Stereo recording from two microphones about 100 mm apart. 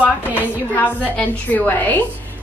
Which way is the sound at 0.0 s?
15° right (ahead or behind).